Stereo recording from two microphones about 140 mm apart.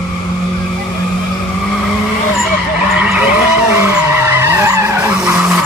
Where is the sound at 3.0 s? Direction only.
10° right (ahead or behind).